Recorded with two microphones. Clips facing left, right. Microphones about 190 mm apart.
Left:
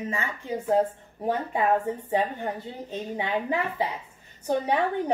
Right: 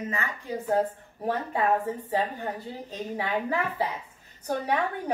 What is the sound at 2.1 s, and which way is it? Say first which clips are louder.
A woman's voice: left 3 dB; 20° left (ahead or behind).